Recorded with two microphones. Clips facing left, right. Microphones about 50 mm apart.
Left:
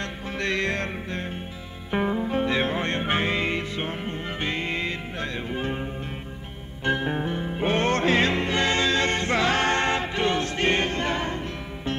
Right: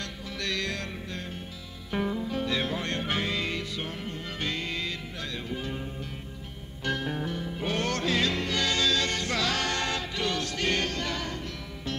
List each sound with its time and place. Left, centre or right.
0.4 s music: left